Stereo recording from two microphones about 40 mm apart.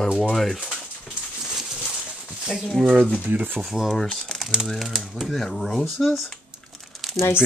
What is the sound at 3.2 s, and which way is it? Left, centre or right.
Speech, right.